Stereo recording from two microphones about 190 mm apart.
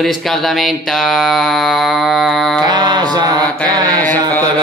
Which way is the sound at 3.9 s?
10° left (ahead or behind).